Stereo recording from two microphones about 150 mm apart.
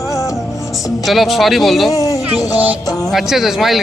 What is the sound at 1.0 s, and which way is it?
Speech, centre (ahead or behind).